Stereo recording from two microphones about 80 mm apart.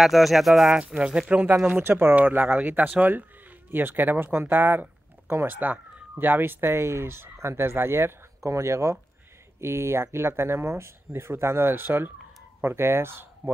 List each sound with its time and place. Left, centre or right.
0.0 s speech: centre
1.7 s speech: right